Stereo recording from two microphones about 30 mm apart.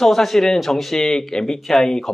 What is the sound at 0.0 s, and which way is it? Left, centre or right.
Speech, centre.